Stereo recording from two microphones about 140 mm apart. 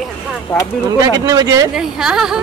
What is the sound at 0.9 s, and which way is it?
Speech, 25° right (ahead or behind).